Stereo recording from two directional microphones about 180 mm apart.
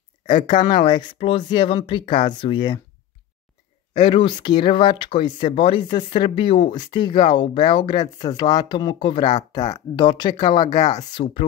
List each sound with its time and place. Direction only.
0.3 s speech: 25° left (ahead or behind)
3.9 s speech: 30° left (ahead or behind)